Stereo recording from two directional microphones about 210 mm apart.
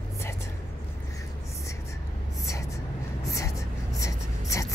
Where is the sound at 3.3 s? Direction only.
15° left (ahead or behind).